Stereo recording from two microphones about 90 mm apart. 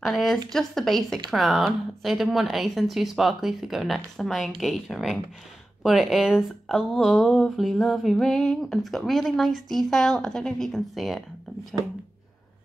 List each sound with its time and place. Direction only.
0.5 s speech: 5° left (ahead or behind)